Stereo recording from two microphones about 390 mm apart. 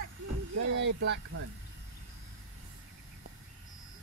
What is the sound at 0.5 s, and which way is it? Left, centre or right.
Speech, right.